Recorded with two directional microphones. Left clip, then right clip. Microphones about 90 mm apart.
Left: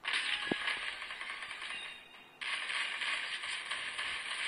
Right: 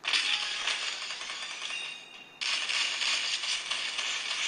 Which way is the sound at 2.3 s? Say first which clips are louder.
Right 7 dB; 45° right (ahead or behind).